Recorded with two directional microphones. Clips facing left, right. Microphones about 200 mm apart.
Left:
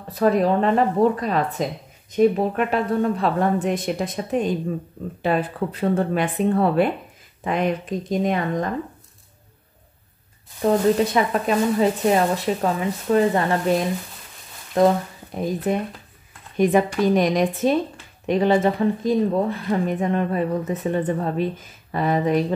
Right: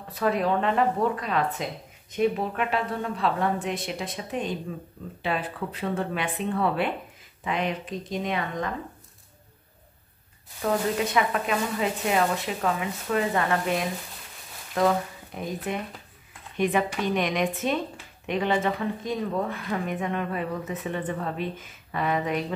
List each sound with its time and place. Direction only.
0.1 s a woman's voice: 40° left (ahead or behind)
10.6 s speech: 30° left (ahead or behind)
14.8 s speech: 35° left (ahead or behind)